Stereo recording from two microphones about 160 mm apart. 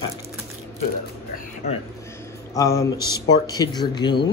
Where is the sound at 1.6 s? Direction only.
45° left (ahead or behind).